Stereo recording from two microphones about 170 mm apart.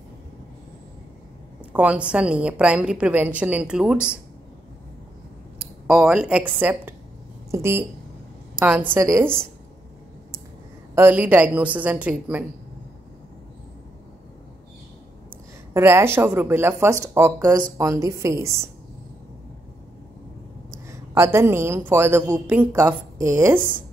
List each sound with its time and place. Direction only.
1.6 s a woman's voice: 5° right (ahead or behind)
5.6 s a woman's voice: centre (ahead or behind)
11.0 s a woman's voice: 10° right (ahead or behind)
15.7 s a woman's voice: 15° right (ahead or behind)
20.9 s a woman's voice: 15° right (ahead or behind)